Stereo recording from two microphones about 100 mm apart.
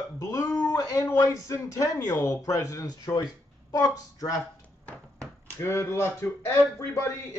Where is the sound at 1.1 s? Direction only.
35° left (ahead or behind).